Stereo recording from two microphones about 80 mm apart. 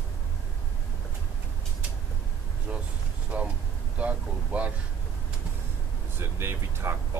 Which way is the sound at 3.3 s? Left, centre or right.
Centre.